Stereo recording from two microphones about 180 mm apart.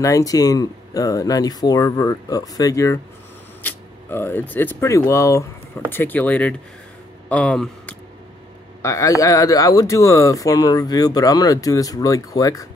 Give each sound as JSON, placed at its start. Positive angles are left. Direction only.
{"t": 0.0, "sound": "speech", "side_deg": 20}
{"t": 8.8, "sound": "speech", "side_deg": 15}